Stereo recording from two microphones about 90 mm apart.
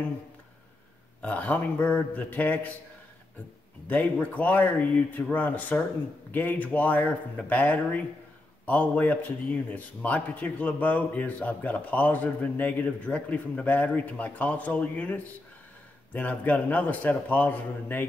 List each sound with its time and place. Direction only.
1.2 s a man's voice: 15° left (ahead or behind)
3.8 s a man's voice: 15° left (ahead or behind)